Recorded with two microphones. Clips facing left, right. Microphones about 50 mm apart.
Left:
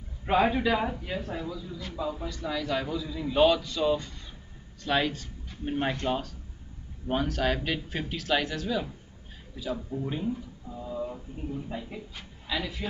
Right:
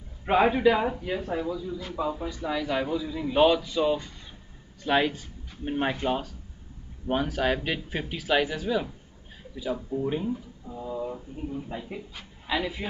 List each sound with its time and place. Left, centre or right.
0.2 s a man's voice: centre
12.4 s speech: centre